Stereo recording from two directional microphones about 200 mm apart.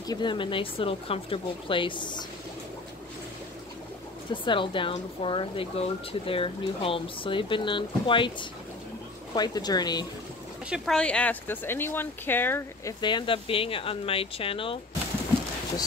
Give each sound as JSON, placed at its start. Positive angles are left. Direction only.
{"t": 0.0, "sound": "speech", "side_deg": 20}
{"t": 4.3, "sound": "speech", "side_deg": 25}
{"t": 10.7, "sound": "speech", "side_deg": 5}
{"t": 13.0, "sound": "speech", "side_deg": 25}